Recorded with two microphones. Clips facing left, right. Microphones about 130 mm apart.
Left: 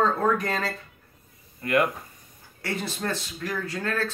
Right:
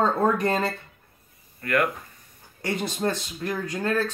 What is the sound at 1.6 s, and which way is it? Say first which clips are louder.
Speech: left 1 dB; 25° left (ahead or behind).